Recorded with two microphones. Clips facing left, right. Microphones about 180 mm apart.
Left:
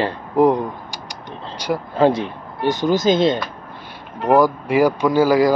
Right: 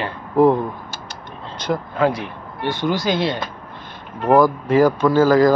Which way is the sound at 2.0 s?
25° left (ahead or behind).